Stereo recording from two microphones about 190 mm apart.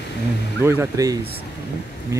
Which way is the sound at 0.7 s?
15° right (ahead or behind).